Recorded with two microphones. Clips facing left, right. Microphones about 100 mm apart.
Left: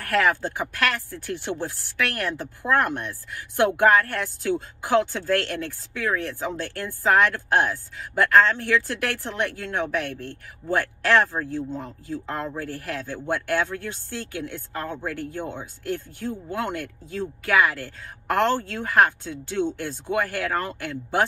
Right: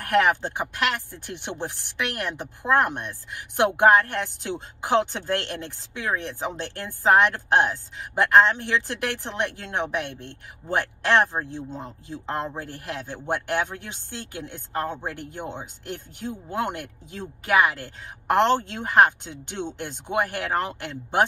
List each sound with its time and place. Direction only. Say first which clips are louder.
0.0 s speech: right 1 dB; 20° right (ahead or behind)